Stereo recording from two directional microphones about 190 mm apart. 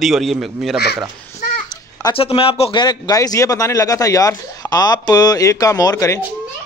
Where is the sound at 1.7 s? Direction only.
20° left (ahead or behind).